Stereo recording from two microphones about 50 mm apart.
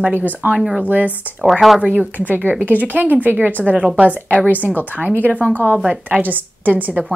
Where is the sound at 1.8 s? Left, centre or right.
Right.